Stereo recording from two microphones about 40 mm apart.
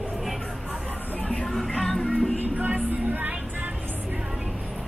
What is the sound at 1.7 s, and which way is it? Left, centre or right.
Music, centre.